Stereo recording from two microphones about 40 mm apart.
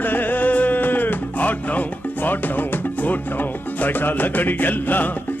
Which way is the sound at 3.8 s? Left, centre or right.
Left.